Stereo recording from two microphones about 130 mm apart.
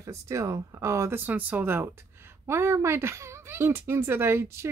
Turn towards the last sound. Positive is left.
turn(degrees=-20)  # may be behind; listen again after turning